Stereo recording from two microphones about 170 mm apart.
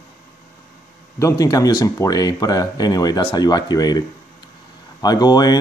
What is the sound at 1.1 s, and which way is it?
Speech, 20° left (ahead or behind).